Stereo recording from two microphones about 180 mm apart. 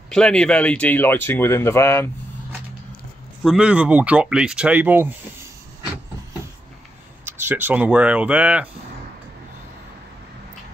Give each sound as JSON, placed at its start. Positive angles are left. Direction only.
{"t": 0.1, "sound": "speech", "side_deg": 5}
{"t": 3.4, "sound": "speech", "side_deg": -5}
{"t": 7.2, "sound": "speech", "side_deg": -10}